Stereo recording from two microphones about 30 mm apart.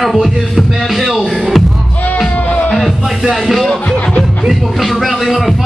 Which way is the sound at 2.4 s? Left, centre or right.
Left.